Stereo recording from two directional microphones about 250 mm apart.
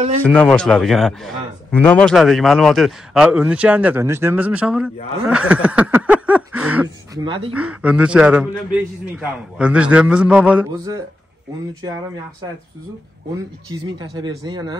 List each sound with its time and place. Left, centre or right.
0.2 s a man's voice: centre
5.2 s a sound: centre
7.2 s speech: right
7.5 s a man's voice: centre
13.7 s speech: centre